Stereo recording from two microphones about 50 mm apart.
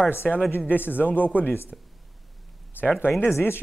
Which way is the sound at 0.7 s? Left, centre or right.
Left.